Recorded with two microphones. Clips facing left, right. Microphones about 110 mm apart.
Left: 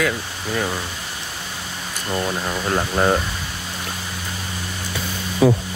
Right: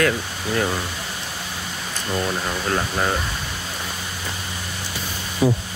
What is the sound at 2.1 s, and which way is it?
Speech, 10° left (ahead or behind).